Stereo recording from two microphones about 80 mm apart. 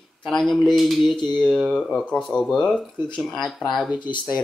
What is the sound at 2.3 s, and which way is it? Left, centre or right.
Speech, centre.